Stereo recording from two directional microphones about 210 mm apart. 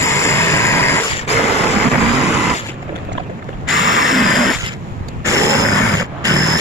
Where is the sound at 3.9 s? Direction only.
Centre (ahead or behind).